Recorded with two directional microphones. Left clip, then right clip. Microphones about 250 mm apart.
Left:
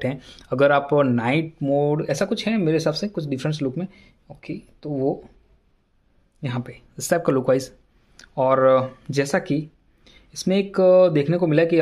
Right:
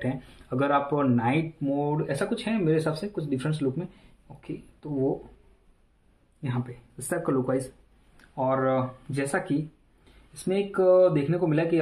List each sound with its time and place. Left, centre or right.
0.0 s speech: left
6.4 s speech: left